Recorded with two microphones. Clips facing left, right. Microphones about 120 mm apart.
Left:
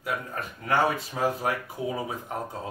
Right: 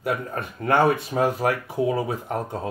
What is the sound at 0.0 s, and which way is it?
Speech, 60° right (ahead or behind).